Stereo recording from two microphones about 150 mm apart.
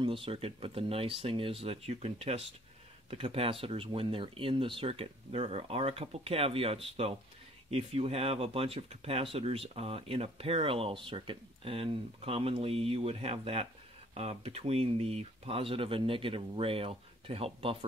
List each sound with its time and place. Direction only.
0.0 s speech: 35° right (ahead or behind)